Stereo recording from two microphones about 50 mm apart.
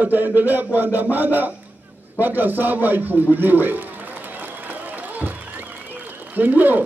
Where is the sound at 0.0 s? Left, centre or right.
Right.